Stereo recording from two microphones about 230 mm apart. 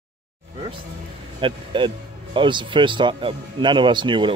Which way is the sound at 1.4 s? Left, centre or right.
Right.